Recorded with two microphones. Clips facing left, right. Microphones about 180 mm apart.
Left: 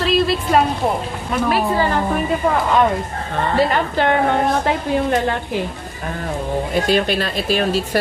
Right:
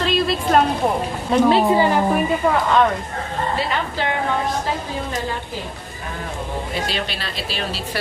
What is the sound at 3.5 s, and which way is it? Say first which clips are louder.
A woman's voice: left 10 dB; 50° left (ahead or behind).